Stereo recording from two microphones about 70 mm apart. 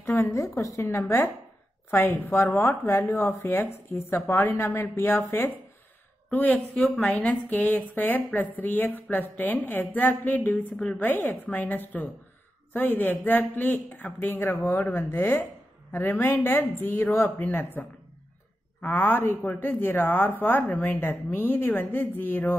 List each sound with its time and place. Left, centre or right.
0.0 s a woman's voice: left
1.9 s a woman's voice: left
6.3 s a woman's voice: left